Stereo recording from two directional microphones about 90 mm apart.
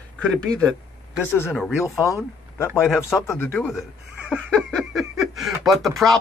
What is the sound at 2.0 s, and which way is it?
Speech, 35° left (ahead or behind).